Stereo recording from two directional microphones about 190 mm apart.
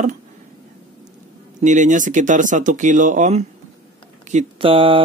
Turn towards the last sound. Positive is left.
turn(degrees=-30)  # may be behind; listen again after turning